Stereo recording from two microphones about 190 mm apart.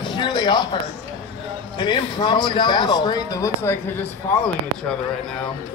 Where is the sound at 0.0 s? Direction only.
20° left (ahead or behind).